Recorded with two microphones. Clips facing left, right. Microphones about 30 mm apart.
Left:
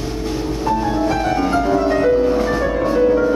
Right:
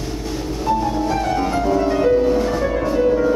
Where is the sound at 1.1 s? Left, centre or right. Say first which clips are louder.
Left 2 dB; centre.